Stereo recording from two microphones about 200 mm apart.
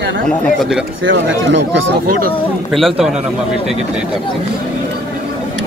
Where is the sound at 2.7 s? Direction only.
Centre (ahead or behind).